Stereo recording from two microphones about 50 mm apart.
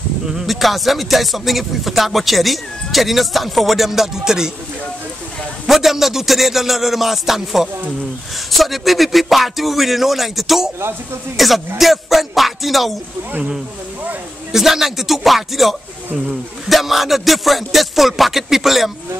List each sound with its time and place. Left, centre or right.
0.5 s speech: centre
5.7 s speech: centre
11.8 s music: centre
14.5 s speech: centre